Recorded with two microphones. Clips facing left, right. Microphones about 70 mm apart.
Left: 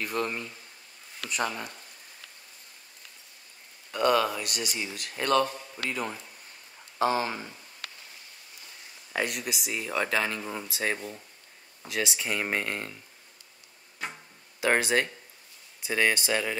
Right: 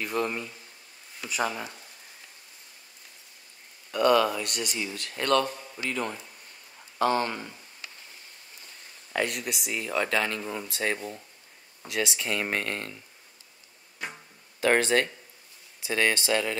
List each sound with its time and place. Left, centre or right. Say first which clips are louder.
0.0 s speech: right 2 dB; centre
3.9 s speech: right 2 dB; centre
4.4 s speech: right 1 dB; centre
7.8 s a sound: left 2 dB; left
9.1 s speech: right 1 dB; centre
11.0 s speech: right 2 dB; centre
14.6 s speech: right 2 dB; centre